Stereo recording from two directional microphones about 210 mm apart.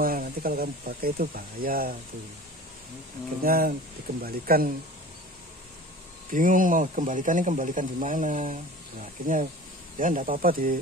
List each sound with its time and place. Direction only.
0.0 s speech: 45° right (ahead or behind)
3.4 s speech: 45° right (ahead or behind)
6.3 s speech: 40° right (ahead or behind)